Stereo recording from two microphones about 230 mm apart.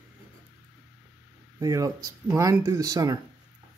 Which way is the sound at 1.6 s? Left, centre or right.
Centre.